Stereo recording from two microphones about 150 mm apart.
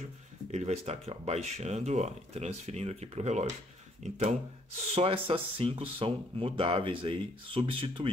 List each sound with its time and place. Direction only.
0.5 s speech: 50° right (ahead or behind)
4.9 s speech: 40° right (ahead or behind)